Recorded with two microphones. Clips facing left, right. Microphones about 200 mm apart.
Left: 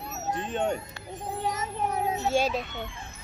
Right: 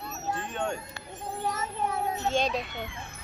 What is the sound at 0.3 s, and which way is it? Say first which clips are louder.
A child's voice: left 4 dB; 20° left (ahead or behind).